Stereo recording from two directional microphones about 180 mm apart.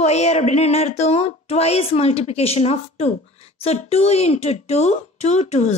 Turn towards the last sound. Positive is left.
turn(degrees=35)  # may be behind; listen again after turning